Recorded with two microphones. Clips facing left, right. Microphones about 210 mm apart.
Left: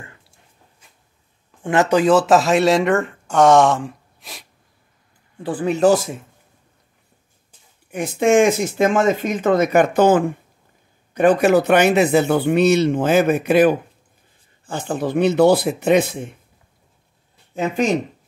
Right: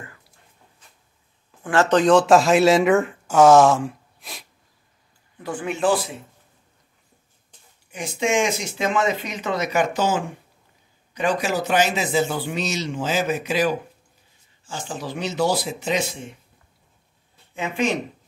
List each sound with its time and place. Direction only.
0.0 s writing: 25° left (ahead or behind)
1.6 s speech: 20° left (ahead or behind); by 4.5 s centre (ahead or behind)
5.4 s speech: 35° left (ahead or behind)
7.9 s speech: 55° left (ahead or behind)
17.6 s speech: 40° left (ahead or behind)